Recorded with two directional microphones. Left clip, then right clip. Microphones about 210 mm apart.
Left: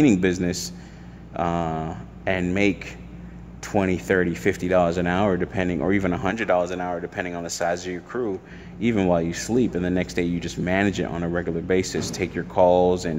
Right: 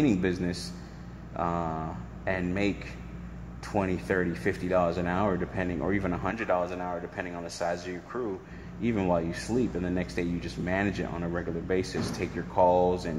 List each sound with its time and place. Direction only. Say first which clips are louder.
0.0 s speech: left 7 dB; 50° left (ahead or behind)